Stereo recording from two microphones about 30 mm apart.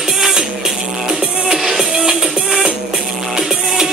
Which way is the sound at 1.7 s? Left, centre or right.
Centre.